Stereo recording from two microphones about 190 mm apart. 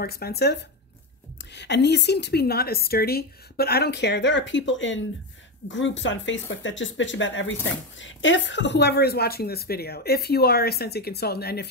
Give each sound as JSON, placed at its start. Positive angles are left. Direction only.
{"t": 0.0, "sound": "speech", "side_deg": 55}